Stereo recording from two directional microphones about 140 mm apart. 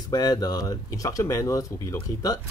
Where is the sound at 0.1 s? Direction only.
25° left (ahead or behind).